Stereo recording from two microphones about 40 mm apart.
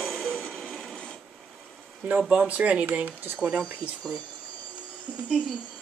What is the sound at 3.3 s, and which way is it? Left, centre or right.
Speech, right.